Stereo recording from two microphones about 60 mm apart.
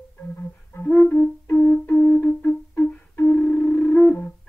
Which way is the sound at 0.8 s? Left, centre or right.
Left.